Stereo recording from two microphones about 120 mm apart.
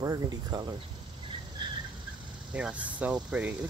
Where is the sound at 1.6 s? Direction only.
40° right (ahead or behind).